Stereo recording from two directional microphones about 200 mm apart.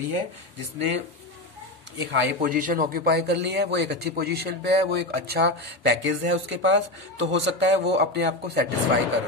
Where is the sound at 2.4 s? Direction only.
45° right (ahead or behind).